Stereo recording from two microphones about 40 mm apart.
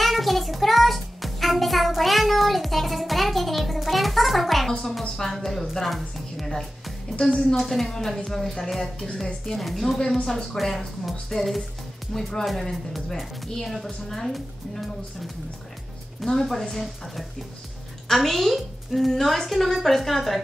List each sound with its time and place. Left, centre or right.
0.0 s music: centre
5.2 s a woman's voice: centre
7.2 s a woman's voice: left
7.5 s a woman's voice: centre
9.9 s a woman's voice: centre
16.3 s a woman's voice: centre